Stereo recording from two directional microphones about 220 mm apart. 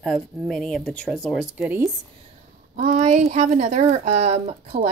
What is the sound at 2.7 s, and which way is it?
A woman's voice, 30° right (ahead or behind).